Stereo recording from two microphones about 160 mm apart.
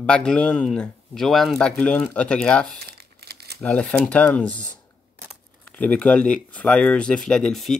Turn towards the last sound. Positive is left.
turn(degrees=5)  # may be behind; listen again after turning